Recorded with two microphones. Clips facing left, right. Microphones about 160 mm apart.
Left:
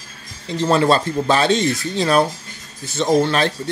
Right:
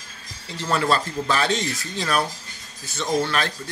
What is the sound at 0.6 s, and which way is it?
Speech, 25° left (ahead or behind).